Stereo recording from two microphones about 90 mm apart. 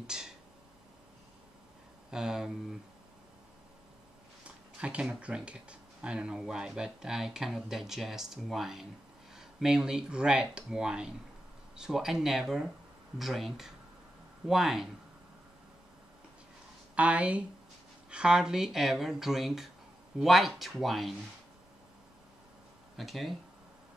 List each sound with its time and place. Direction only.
0.0 s a sound: 5° right (ahead or behind)
2.0 s speech: 5° right (ahead or behind)
4.7 s speech: 10° right (ahead or behind)
16.9 s speech: 15° right (ahead or behind)
22.9 s speech: centre (ahead or behind)